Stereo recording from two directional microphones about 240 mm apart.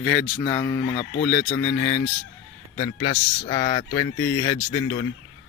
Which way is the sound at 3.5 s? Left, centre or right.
Centre.